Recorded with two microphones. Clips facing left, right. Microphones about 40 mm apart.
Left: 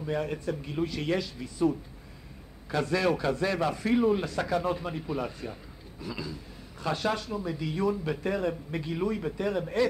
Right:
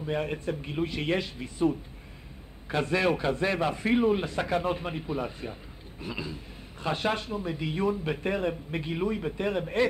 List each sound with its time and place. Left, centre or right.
0.0 s speech: right
5.9 s speech: right